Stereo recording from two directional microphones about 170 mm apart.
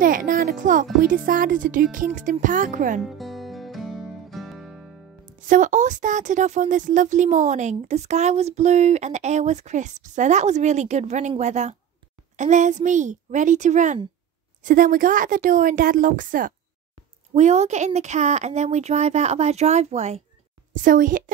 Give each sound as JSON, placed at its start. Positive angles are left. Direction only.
{"t": 0.0, "sound": "speech", "side_deg": -50}
{"t": 3.0, "sound": "music", "side_deg": 0}
{"t": 5.2, "sound": "speech", "side_deg": -50}
{"t": 17.3, "sound": "speech", "side_deg": -40}
{"t": 20.7, "sound": "speech", "side_deg": -50}